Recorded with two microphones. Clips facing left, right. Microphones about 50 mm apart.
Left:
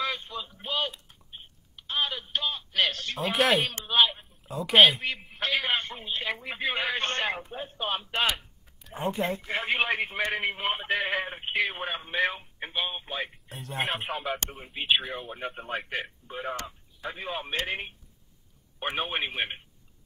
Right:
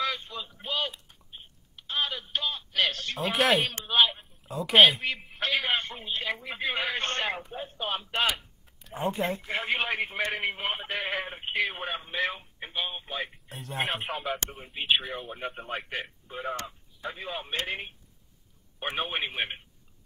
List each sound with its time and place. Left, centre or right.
0.0 s a sound: centre
1.8 s telephone: centre
3.8 s a sound: centre
6.2 s speech: centre
12.2 s telephone: left
12.7 s speech: centre
13.5 s speech: centre
18.8 s speech: centre